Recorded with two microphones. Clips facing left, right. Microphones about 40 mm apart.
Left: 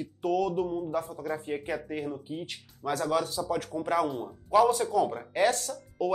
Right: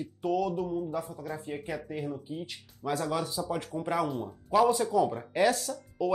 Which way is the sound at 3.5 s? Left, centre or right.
Centre.